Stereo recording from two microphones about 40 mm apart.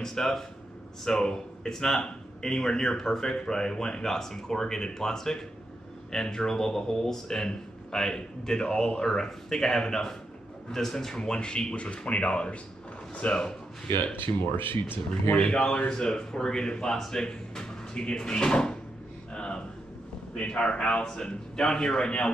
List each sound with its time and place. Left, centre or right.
0.0 s a man's voice: centre; by 13.5 s left
14.2 s speech: left
15.3 s a man's voice: left
19.3 s a sound: left
20.4 s a man's voice: left